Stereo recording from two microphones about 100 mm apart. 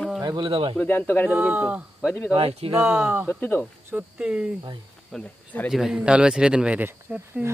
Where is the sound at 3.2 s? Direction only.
20° left (ahead or behind).